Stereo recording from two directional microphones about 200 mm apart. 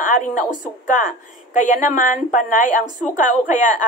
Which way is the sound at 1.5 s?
40° left (ahead or behind).